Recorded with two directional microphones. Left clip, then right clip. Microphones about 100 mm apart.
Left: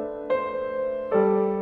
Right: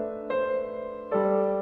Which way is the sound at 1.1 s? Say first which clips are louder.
Left 3 dB; 30° left (ahead or behind).